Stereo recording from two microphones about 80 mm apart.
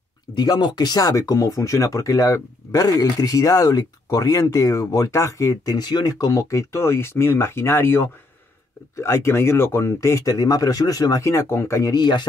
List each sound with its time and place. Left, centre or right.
0.3 s speech: left
5.8 s speech: left
11.9 s speech: left